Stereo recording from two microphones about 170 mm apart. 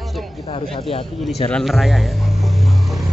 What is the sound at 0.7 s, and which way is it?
Speech, 30° left (ahead or behind).